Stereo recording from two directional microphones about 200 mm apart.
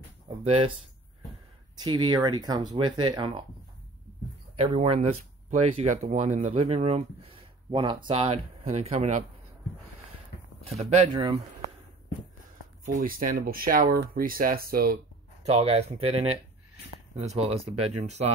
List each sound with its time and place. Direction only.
0.4 s speech: 30° right (ahead or behind)
1.8 s speech: 20° right (ahead or behind)
4.6 s speech: 30° right (ahead or behind)
7.7 s speech: 25° right (ahead or behind)
10.6 s speech: 30° right (ahead or behind)
12.8 s speech: 45° right (ahead or behind)
15.4 s speech: 30° right (ahead or behind)